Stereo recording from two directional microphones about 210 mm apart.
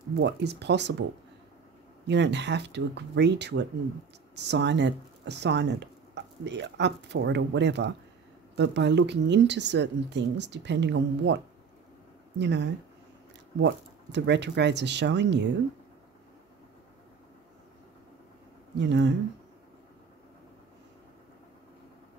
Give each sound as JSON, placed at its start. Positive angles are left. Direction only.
{"t": 0.2, "sound": "speech", "side_deg": -55}
{"t": 2.0, "sound": "speech", "side_deg": -55}
{"t": 12.4, "sound": "speech", "side_deg": -55}
{"t": 18.8, "sound": "speech", "side_deg": -55}